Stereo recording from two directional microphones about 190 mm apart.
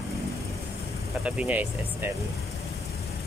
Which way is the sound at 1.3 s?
5° right (ahead or behind).